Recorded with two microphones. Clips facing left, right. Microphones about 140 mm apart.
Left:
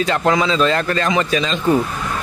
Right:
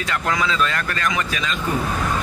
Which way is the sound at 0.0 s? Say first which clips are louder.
Left 6 dB; 25° left (ahead or behind).